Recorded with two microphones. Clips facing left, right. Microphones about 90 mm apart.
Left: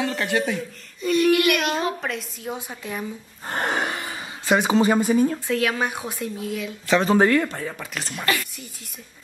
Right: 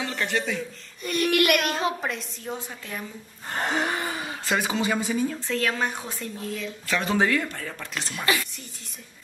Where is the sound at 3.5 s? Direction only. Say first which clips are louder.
Left 3 dB; 55° left (ahead or behind).